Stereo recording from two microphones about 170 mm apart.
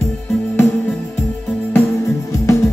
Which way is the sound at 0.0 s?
10° left (ahead or behind).